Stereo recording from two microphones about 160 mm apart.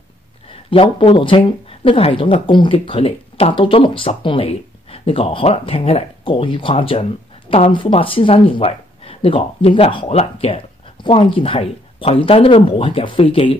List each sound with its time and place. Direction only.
0.5 s speech: 35° left (ahead or behind)